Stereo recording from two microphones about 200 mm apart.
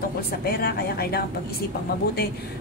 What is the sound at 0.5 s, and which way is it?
A woman's voice, 50° left (ahead or behind).